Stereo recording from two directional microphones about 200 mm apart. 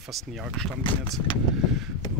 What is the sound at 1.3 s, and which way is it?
Speech, 25° left (ahead or behind).